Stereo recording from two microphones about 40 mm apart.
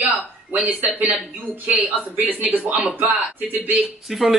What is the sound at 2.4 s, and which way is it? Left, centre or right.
Speech, right.